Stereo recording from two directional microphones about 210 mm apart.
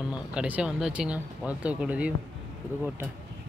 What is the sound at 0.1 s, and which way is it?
Speech, 5° right (ahead or behind).